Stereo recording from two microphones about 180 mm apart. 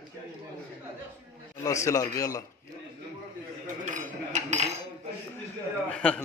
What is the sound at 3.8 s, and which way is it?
Cutlery, 40° right (ahead or behind).